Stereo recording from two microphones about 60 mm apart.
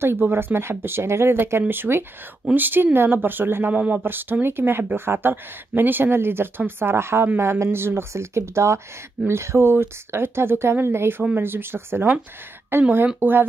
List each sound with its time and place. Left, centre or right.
0.0 s speech: right
3.7 s speech: right
4.0 s speech: right